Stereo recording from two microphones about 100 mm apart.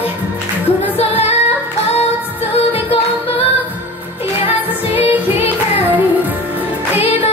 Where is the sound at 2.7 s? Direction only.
75° left (ahead or behind).